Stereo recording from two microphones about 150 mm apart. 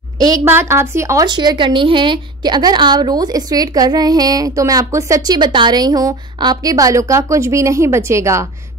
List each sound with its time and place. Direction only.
0.2 s a woman's voice: 20° right (ahead or behind)